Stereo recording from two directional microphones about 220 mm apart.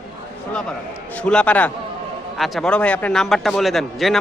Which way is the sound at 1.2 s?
5° left (ahead or behind).